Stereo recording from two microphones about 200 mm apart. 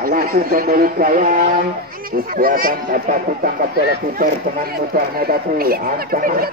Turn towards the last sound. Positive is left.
turn(degrees=-45)  # may be behind; listen again after turning